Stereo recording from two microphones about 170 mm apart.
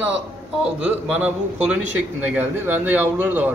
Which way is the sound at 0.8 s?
5° right (ahead or behind).